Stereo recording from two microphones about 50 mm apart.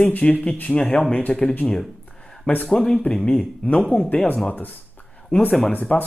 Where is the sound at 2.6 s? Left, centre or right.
Centre.